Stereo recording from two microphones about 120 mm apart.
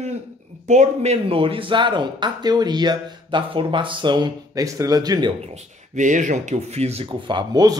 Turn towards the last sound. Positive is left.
turn(degrees=-35)  # may be behind; listen again after turning